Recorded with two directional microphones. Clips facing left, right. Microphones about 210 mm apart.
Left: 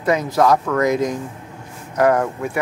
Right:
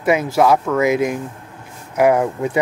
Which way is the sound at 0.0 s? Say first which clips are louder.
Right 2 dB; 5° right (ahead or behind).